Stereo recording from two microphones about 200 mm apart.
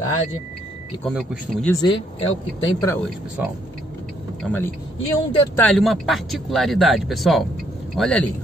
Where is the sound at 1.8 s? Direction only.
25° left (ahead or behind).